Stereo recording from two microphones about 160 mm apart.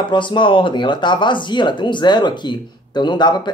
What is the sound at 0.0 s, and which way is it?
Speech, 30° left (ahead or behind).